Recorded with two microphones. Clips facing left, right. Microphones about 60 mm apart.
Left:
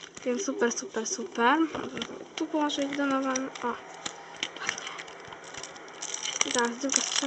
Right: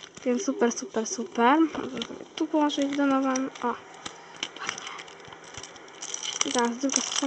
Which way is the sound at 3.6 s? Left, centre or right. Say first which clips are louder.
Right 3 dB; centre.